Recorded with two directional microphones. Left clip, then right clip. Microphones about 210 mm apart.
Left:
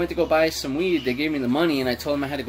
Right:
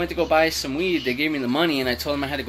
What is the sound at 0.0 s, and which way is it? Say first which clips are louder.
Speech: right 1 dB; 5° left (ahead or behind).